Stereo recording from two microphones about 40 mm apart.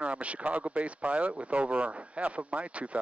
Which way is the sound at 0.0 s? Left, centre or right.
Right.